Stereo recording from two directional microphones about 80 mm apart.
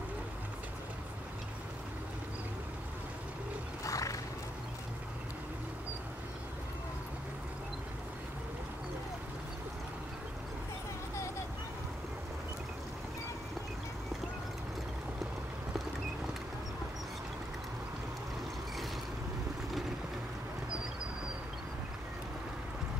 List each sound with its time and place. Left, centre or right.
3.8 s horse: left